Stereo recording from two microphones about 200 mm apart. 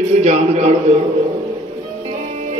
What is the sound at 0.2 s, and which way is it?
Speech, 35° right (ahead or behind).